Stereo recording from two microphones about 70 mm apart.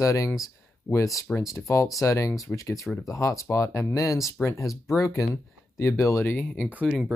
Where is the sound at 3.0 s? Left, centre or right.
Left.